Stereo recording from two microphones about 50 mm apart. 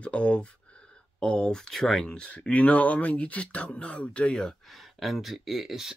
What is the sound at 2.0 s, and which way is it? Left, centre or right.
Speech, left.